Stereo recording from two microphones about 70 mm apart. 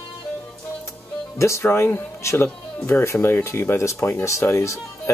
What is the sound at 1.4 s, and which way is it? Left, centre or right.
Speech, left.